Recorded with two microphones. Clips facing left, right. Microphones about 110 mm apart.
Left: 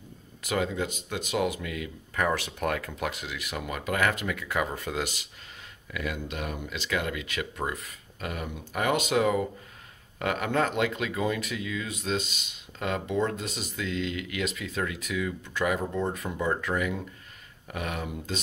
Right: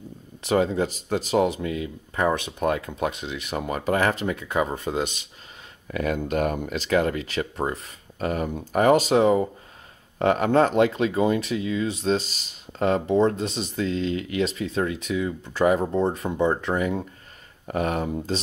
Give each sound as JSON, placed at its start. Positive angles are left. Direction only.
{"t": 0.4, "sound": "speech", "side_deg": -30}
{"t": 5.9, "sound": "speech", "side_deg": -40}